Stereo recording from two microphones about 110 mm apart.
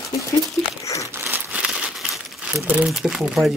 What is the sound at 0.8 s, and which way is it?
Crumpling, 30° left (ahead or behind).